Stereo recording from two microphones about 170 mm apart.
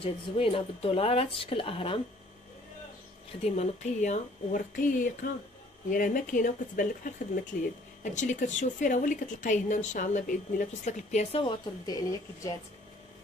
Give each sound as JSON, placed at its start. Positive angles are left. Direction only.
{"t": 0.0, "sound": "speech", "side_deg": 35}
{"t": 3.4, "sound": "a woman's voice", "side_deg": 40}
{"t": 11.4, "sound": "a woman's voice", "side_deg": 25}